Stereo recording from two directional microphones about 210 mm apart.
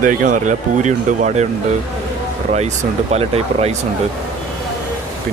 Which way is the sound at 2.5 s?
30° right (ahead or behind).